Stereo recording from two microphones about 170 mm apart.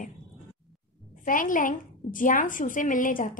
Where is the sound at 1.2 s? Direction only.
50° left (ahead or behind).